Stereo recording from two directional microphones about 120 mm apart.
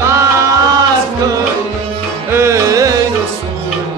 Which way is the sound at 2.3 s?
25° right (ahead or behind).